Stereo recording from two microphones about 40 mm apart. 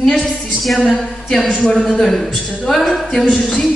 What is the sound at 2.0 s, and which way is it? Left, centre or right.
Speech, centre.